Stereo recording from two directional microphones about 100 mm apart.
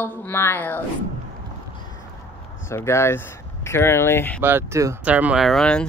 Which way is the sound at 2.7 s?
25° left (ahead or behind).